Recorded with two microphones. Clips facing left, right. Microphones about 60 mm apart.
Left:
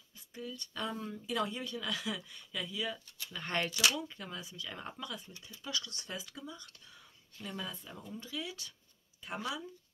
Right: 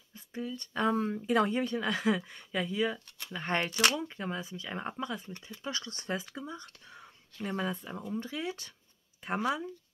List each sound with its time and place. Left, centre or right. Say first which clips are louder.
0.6 s speech: right 11 dB; right
0.9 s speech: right 6 dB; right
3.1 s speech: right 4 dB; right
3.3 s speech: right 4 dB; right